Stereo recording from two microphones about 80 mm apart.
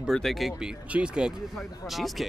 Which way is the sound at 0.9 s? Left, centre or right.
Centre.